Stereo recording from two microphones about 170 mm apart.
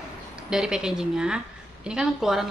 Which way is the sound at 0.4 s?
5° right (ahead or behind).